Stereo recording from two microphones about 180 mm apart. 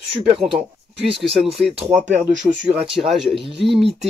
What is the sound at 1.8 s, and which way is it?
Speech, centre (ahead or behind).